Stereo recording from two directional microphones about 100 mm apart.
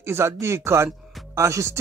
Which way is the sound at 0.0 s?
25° right (ahead or behind).